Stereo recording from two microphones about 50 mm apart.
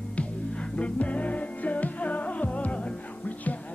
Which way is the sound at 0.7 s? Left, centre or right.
Left.